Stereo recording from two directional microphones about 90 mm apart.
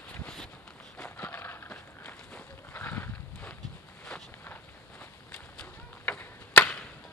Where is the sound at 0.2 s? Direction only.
5° left (ahead or behind).